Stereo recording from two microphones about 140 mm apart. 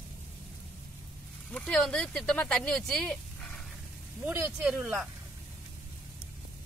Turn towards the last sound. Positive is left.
turn(degrees=-5)  # may be behind; listen again after turning